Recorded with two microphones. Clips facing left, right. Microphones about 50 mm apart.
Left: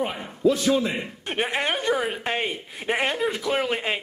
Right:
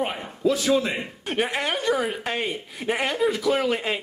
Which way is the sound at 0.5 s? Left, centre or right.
Centre.